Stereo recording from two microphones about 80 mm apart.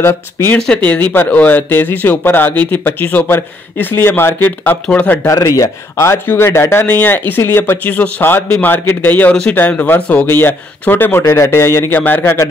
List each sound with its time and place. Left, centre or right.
0.0 s speech: left
5.2 s speech: left
6.2 s speech: left
6.9 s speech: left
11.9 s speech: left